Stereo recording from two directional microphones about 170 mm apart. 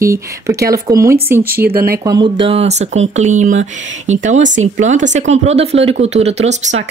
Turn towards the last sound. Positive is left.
turn(degrees=-40)  # may be behind; listen again after turning